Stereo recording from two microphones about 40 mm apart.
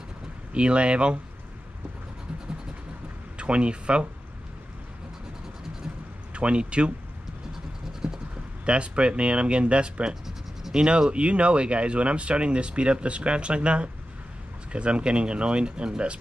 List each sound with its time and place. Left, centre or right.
0.5 s speech: right
3.3 s speech: right
6.3 s speech: right
8.0 s a sound: centre
8.6 s speech: right